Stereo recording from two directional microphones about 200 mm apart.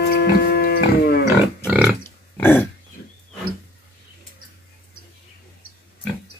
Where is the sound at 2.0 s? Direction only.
10° left (ahead or behind).